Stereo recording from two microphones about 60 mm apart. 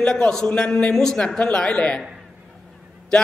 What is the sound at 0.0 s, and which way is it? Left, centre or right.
A man's voice, centre.